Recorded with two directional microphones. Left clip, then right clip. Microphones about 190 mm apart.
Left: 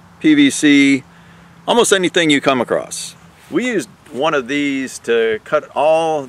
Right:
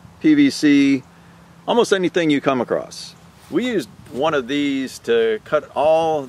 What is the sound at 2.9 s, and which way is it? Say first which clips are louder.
Speech: left 6 dB; 15° right (ahead or behind).